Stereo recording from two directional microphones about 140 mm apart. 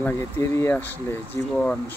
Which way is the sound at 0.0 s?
15° left (ahead or behind).